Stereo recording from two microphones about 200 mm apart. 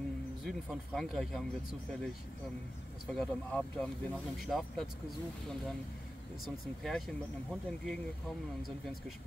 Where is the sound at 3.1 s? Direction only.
5° left (ahead or behind).